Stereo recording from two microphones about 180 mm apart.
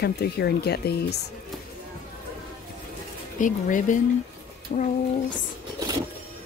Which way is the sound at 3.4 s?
45° left (ahead or behind).